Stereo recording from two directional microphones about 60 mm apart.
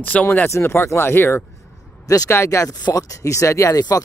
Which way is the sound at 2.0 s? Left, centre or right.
Left.